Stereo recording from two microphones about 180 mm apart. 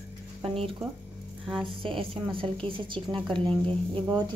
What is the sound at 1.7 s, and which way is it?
Speech, 30° right (ahead or behind).